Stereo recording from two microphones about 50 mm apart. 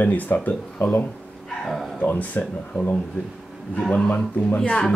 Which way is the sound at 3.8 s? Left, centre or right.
Centre.